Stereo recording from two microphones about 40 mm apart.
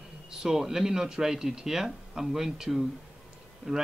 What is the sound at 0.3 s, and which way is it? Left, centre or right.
Speech, centre.